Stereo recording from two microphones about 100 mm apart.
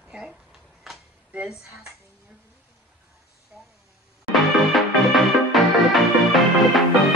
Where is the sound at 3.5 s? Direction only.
15° right (ahead or behind).